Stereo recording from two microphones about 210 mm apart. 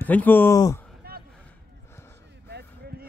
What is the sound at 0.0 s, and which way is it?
Speech, 10° left (ahead or behind).